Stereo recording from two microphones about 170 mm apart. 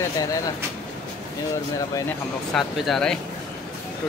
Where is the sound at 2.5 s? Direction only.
Centre (ahead or behind).